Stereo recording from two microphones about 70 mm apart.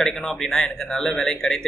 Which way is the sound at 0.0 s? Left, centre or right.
Centre.